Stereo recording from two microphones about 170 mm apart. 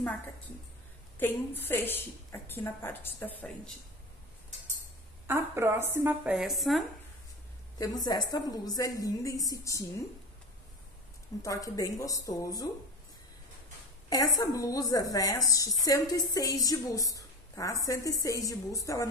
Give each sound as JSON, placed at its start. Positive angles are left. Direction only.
{"t": 1.2, "sound": "a woman's voice", "side_deg": 10}
{"t": 5.2, "sound": "a woman's voice", "side_deg": -15}
{"t": 7.8, "sound": "a woman's voice", "side_deg": 20}
{"t": 11.4, "sound": "a woman's voice", "side_deg": 20}
{"t": 14.0, "sound": "a woman's voice", "side_deg": 20}